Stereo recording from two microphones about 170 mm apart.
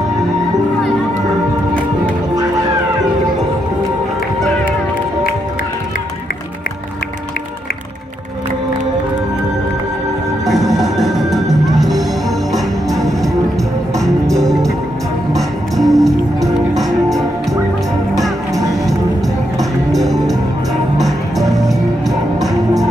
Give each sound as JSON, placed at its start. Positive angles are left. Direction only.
{"t": 10.5, "sound": "music", "side_deg": 0}
{"t": 18.5, "sound": "music", "side_deg": -20}
{"t": 19.6, "sound": "music", "side_deg": 0}